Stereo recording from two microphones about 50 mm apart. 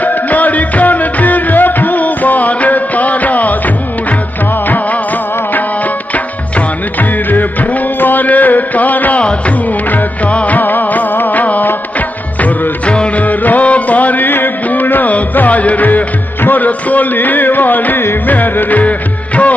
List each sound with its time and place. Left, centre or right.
0.0 s music: left
4.6 s music of bollywood: left
7.0 s music: left
9.2 s music of bollywood: left
12.4 s music: left